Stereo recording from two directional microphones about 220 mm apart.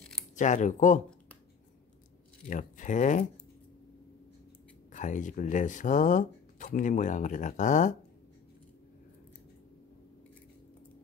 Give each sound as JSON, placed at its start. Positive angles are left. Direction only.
{"t": 0.4, "sound": "speech", "side_deg": 35}
{"t": 2.4, "sound": "speech", "side_deg": 35}
{"t": 4.9, "sound": "speech", "side_deg": 35}